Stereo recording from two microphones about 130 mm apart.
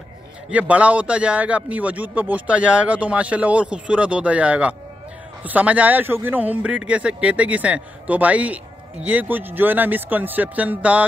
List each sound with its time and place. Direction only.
0.5 s a man's voice: 10° right (ahead or behind)